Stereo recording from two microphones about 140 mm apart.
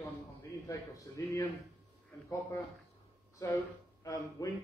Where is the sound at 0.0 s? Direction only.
25° left (ahead or behind).